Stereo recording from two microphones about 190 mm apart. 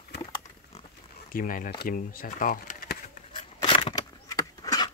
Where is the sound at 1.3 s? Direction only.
45° left (ahead or behind).